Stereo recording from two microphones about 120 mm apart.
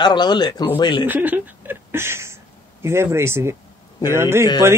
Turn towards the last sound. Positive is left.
turn(degrees=-20)  # may be behind; listen again after turning